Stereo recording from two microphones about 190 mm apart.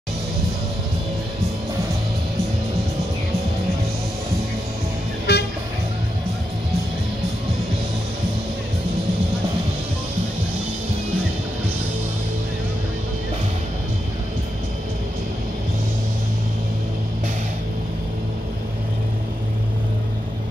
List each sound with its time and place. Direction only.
5.3 s music: 60° left (ahead or behind)